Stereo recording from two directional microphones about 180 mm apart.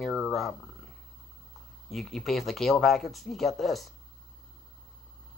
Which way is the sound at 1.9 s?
Centre (ahead or behind).